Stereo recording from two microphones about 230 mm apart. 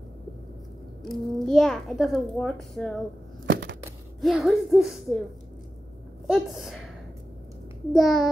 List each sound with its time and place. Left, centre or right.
1.0 s a child's voice: centre
3.4 s a sound: right
4.2 s a child's voice: centre
6.2 s a child's voice: centre
7.9 s a child's voice: centre